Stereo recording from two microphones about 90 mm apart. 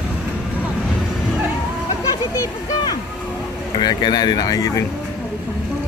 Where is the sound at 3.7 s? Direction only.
55° left (ahead or behind).